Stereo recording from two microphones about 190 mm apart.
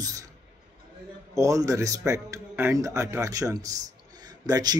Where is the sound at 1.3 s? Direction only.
15° right (ahead or behind).